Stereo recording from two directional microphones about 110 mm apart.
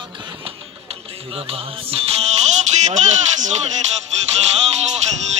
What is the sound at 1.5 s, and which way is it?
Music, 60° right (ahead or behind).